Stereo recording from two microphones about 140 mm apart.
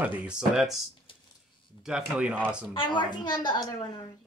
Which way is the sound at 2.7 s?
35° left (ahead or behind).